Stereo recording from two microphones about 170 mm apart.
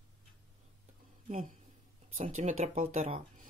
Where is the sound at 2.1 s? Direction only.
40° right (ahead or behind).